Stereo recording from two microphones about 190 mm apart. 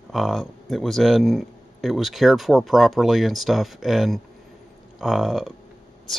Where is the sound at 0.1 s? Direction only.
Centre (ahead or behind).